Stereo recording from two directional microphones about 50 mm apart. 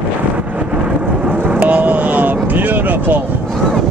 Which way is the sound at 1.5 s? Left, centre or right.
Right.